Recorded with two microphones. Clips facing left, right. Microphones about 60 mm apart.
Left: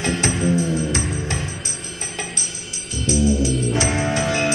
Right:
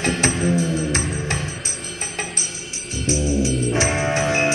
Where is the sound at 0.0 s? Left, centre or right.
Right.